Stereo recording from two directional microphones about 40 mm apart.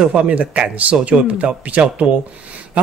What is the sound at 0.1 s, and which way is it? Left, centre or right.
Speech, right.